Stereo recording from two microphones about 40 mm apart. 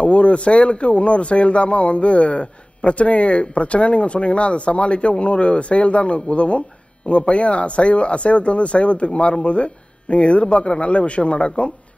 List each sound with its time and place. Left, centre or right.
0.0 s a man's voice: left